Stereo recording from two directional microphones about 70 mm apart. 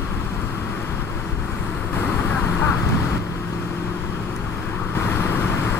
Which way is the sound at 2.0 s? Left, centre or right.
Centre.